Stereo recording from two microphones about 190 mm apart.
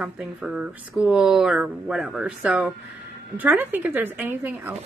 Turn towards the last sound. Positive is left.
turn(degrees=-10)  # may be behind; listen again after turning